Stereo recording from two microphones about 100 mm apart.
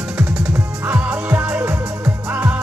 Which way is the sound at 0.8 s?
15° right (ahead or behind).